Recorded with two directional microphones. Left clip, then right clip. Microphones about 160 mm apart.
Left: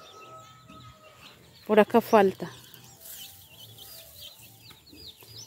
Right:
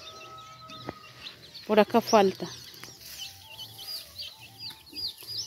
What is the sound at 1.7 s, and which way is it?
Speech, 20° left (ahead or behind).